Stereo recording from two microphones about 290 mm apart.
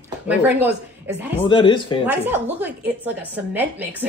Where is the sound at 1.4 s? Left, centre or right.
Centre.